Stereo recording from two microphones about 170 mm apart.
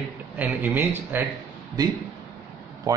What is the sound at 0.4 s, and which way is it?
Speech, 10° right (ahead or behind).